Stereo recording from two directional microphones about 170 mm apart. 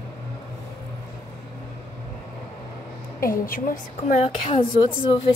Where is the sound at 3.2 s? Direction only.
55° left (ahead or behind).